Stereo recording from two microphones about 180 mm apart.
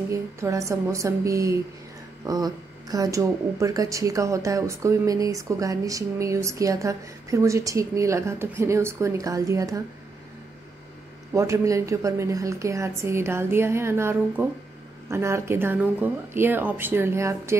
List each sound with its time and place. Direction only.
0.1 s speech: 15° right (ahead or behind)
11.3 s speech: 15° right (ahead or behind)